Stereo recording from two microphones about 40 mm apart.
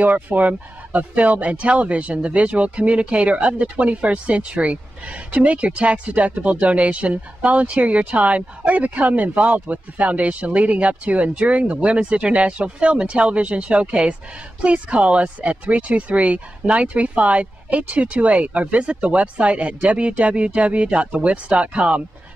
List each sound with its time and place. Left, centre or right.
0.0 s speech: right